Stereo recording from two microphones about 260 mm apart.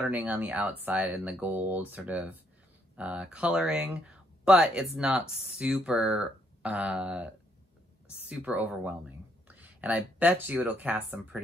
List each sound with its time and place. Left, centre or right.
0.0 s speech: centre